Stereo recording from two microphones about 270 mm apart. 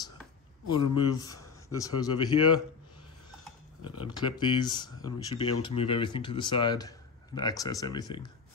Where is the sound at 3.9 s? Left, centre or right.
Centre.